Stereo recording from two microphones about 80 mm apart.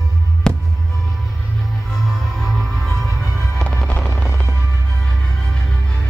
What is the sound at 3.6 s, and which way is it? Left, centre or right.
Fireworks, centre.